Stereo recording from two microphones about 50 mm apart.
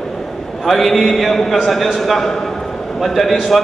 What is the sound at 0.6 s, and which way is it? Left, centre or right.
A man's voice, centre.